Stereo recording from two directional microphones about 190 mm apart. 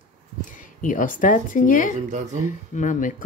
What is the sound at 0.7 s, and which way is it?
Speech, 45° left (ahead or behind).